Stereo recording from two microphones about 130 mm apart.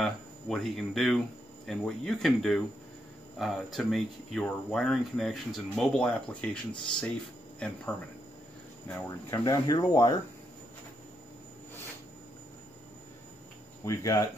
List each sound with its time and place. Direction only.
0.0 s speech: 5° left (ahead or behind)
9.4 s speech: 30° left (ahead or behind)
13.8 s speech: 25° left (ahead or behind)